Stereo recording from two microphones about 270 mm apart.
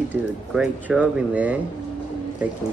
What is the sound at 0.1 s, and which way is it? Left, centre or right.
Speech, centre.